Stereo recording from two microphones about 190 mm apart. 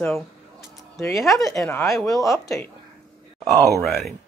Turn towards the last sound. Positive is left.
turn(degrees=0)  # may be behind; listen again after turning